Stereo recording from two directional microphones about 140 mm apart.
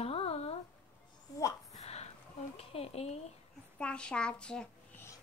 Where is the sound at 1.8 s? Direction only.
50° left (ahead or behind).